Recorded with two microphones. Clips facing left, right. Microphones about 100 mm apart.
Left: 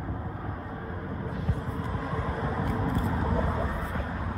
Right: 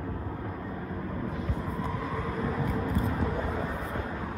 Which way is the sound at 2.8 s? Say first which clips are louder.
Left 1 dB; 30° left (ahead or behind).